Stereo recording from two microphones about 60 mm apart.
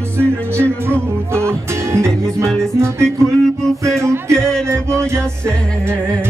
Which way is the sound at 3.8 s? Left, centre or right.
Right.